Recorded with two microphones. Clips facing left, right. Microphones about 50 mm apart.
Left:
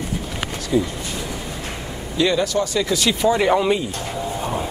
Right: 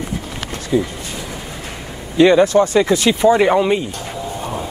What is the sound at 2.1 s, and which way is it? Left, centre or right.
Speech, right.